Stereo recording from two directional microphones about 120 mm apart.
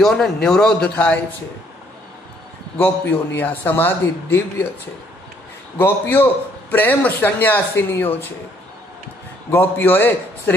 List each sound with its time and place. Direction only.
0.0 s speech: 5° left (ahead or behind)
2.8 s a man's voice: 15° left (ahead or behind)
5.8 s a man's voice: 15° left (ahead or behind)
9.5 s a man's voice: 15° left (ahead or behind)